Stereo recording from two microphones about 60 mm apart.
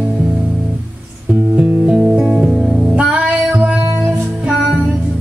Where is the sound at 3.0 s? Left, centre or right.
Centre.